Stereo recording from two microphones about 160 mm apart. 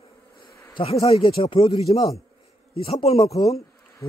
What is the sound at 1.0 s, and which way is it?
A man's voice, 35° left (ahead or behind).